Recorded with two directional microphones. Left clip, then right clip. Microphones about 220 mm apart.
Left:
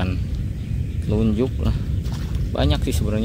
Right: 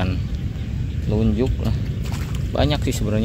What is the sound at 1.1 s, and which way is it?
Speech, 10° left (ahead or behind).